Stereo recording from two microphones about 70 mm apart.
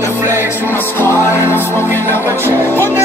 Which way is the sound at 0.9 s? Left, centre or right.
Left.